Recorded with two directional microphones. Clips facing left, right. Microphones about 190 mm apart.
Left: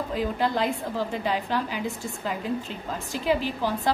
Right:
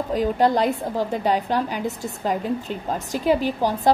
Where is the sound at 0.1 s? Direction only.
40° right (ahead or behind).